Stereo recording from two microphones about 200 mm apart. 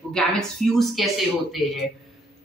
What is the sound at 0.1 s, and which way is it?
Speech, centre (ahead or behind).